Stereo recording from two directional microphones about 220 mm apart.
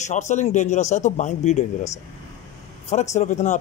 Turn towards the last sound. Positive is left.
turn(degrees=30)  # may be behind; listen again after turning